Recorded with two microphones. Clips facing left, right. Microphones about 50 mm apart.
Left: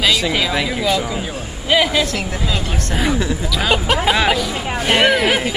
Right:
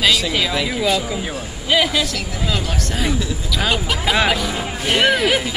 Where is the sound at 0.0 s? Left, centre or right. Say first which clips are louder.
Left 1 dB; centre.